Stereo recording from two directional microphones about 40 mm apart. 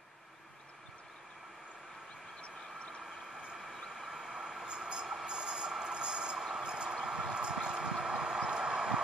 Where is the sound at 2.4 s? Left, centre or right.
Left.